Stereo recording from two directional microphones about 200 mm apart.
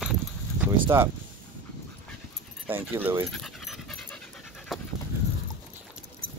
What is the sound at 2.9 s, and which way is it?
Speech, 10° right (ahead or behind).